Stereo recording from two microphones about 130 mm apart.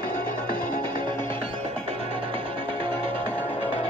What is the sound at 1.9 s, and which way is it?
Music, 45° right (ahead or behind).